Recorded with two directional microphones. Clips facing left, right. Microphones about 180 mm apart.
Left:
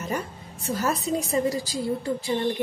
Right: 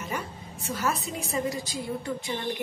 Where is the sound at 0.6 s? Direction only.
40° left (ahead or behind).